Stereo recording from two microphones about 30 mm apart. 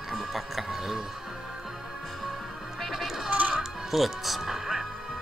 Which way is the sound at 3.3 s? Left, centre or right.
Right.